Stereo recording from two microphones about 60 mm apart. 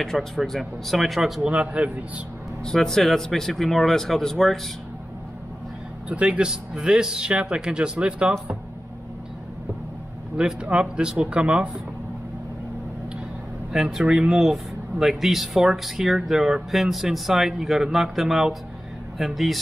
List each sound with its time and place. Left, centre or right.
0.0 s speech: centre
1.5 s a man's voice: centre
2.6 s speech: centre
6.0 s speech: centre
10.3 s speech: centre
13.7 s speech: centre